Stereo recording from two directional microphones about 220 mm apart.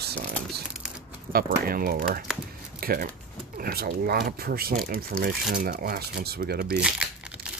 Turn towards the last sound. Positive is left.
turn(degrees=-5)  # may be behind; listen again after turning